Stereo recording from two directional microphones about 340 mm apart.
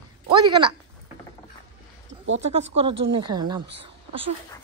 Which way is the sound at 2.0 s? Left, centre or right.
Right.